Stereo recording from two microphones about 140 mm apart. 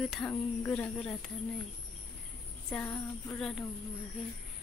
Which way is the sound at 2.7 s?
15° left (ahead or behind).